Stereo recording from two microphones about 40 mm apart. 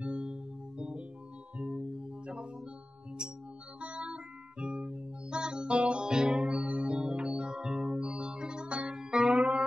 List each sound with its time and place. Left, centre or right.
0.0 s music: right
3.8 s music: right
7.0 s organ: right
7.5 s music: centre